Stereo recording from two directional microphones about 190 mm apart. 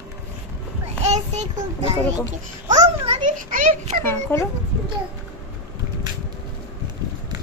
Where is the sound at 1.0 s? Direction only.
35° right (ahead or behind).